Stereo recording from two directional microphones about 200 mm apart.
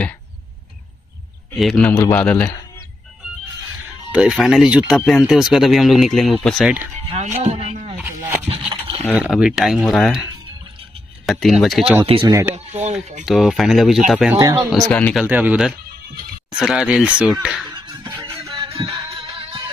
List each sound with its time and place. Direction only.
1.5 s a man's voice: centre (ahead or behind)
4.1 s speech: 5° right (ahead or behind)
7.1 s music: 35° right (ahead or behind)
7.9 s a sound: 10° right (ahead or behind)
9.0 s speech: 5° right (ahead or behind)
12.0 s speech: 25° right (ahead or behind)
12.5 s a sound: 35° right (ahead or behind)
13.2 s speech: centre (ahead or behind)
15.2 s speech: 10° right (ahead or behind)
17.6 s music: 20° right (ahead or behind)